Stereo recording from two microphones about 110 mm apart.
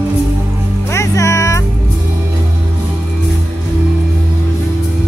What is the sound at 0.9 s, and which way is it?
Music, 25° left (ahead or behind).